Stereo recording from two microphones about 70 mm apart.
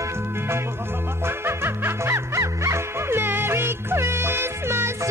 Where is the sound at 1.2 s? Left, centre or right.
Right.